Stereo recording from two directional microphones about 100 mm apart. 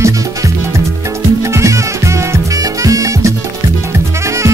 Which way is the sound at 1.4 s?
30° right (ahead or behind).